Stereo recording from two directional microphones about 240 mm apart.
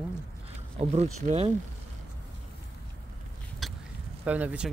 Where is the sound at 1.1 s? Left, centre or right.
Right.